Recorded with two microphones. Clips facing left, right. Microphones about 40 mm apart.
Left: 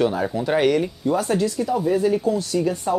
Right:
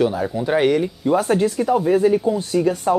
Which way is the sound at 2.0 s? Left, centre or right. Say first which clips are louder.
Right 3 dB; right.